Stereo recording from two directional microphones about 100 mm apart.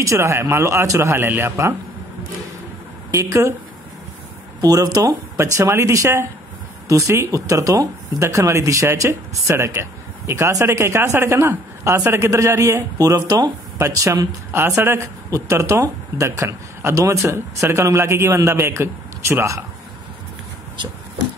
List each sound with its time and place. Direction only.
0.0 s speech: 30° right (ahead or behind)
3.1 s speech: 30° right (ahead or behind)
4.6 s speech: 35° right (ahead or behind)
5.4 s speech: 25° right (ahead or behind)